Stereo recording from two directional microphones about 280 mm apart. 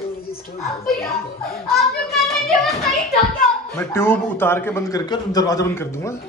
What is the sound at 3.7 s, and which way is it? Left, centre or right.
A man's voice, centre.